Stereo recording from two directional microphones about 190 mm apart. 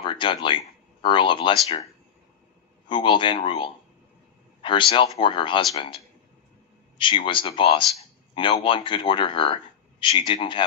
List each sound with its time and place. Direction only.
0.0 s a man's voice: 25° left (ahead or behind)
2.9 s a man's voice: 25° left (ahead or behind)
7.0 s a man's voice: 25° left (ahead or behind)